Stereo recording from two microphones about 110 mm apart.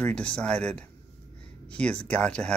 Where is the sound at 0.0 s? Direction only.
10° left (ahead or behind).